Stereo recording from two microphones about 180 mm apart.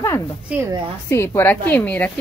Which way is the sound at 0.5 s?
15° right (ahead or behind).